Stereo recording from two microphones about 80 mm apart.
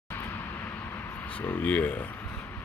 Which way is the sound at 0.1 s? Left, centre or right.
Left.